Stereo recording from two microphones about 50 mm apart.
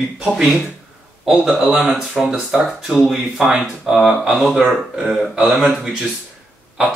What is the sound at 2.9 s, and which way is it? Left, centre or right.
Speech, centre.